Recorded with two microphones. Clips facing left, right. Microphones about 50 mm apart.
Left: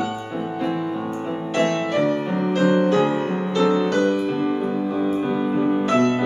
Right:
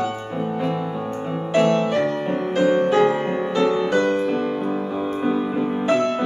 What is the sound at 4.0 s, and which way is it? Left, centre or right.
Music, centre.